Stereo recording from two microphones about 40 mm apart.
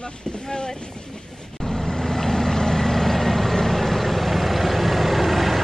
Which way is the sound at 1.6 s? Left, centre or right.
Centre.